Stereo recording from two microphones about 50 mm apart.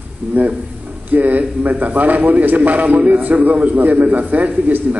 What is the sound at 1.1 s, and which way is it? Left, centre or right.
A man's voice, right.